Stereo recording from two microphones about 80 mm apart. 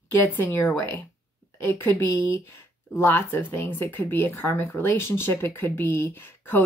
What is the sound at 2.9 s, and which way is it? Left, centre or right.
Speech, left.